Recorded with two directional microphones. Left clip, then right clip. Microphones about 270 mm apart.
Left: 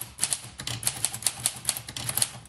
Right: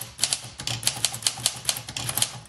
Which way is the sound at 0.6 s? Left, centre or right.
Centre.